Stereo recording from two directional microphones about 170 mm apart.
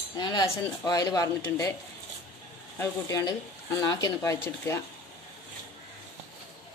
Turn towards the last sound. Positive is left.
turn(degrees=15)  # may be behind; listen again after turning